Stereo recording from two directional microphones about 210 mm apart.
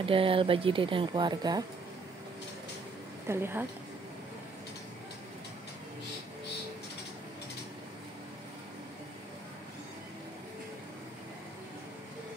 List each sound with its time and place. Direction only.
0.0 s speech: 25° right (ahead or behind)
3.3 s a woman's voice: 10° right (ahead or behind)